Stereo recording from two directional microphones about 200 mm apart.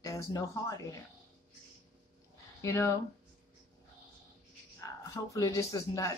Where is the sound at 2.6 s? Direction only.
15° left (ahead or behind).